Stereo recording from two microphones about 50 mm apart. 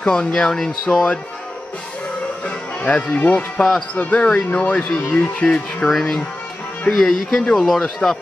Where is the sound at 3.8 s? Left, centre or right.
Left.